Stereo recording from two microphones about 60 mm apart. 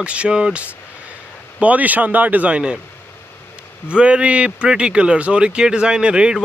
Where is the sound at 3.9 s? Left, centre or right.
Centre.